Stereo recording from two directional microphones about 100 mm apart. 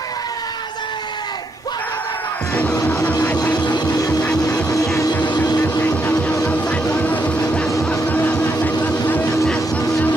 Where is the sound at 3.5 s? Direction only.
45° left (ahead or behind).